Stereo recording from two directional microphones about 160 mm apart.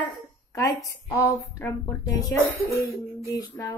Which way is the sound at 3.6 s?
15° left (ahead or behind).